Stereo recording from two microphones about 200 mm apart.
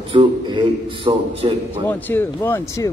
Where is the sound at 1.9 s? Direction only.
10° left (ahead or behind).